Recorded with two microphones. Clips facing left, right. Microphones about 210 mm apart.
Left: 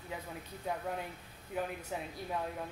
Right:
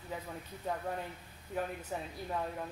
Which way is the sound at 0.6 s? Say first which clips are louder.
Even; 5° left (ahead or behind).